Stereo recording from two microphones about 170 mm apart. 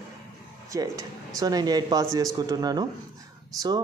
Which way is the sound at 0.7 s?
20° right (ahead or behind).